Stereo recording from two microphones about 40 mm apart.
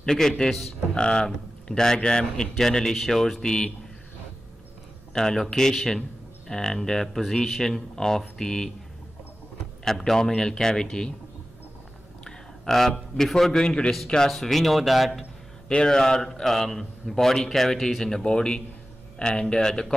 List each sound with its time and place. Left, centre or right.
0.0 s a man's voice: centre
5.1 s a man's voice: centre
9.8 s a man's voice: centre
12.3 s a man's voice: centre
14.3 s speech: centre
15.7 s a man's voice: centre